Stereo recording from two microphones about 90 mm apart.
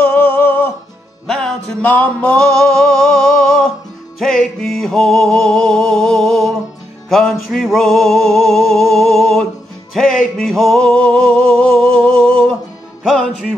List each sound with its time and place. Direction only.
0.0 s music: 15° left (ahead or behind)
1.2 s music: 5° left (ahead or behind)
3.0 s a sound: 5° left (ahead or behind)
4.2 s music: 5° left (ahead or behind)